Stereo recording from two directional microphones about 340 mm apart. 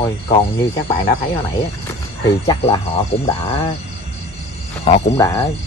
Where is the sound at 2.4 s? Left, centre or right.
Centre.